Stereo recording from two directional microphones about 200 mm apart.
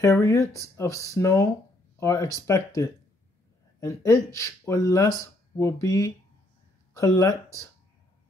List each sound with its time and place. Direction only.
0.0 s speech: 15° left (ahead or behind)